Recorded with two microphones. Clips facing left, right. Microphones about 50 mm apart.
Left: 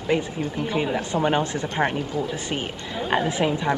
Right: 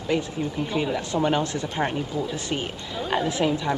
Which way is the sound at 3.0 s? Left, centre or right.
Left.